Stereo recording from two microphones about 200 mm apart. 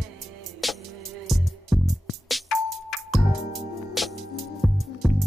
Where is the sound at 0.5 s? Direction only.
Centre (ahead or behind).